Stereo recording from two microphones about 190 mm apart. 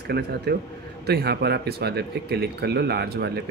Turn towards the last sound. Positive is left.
turn(degrees=-60)  # may be behind; listen again after turning